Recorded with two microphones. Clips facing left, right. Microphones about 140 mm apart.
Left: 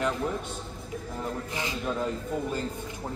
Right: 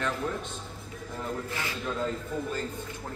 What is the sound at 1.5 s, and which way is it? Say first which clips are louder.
Speech: left 2 dB; 15° left (ahead or behind).